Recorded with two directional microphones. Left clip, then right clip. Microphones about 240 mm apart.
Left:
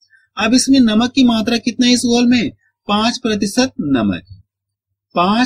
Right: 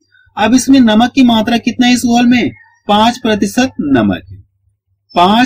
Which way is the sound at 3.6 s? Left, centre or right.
Centre.